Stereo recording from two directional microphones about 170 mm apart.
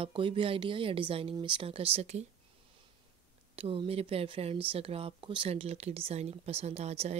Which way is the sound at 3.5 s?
35° right (ahead or behind).